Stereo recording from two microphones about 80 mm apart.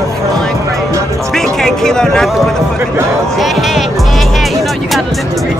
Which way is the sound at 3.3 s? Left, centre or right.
Centre.